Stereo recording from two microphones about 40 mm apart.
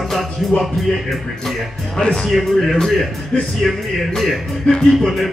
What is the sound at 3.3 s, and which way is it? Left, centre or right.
Speech, left.